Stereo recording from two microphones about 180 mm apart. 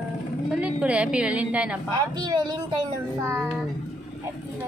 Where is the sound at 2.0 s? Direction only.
20° right (ahead or behind).